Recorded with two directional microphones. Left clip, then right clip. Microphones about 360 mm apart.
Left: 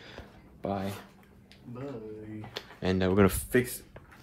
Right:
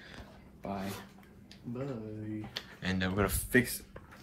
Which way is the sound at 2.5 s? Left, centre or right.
Centre.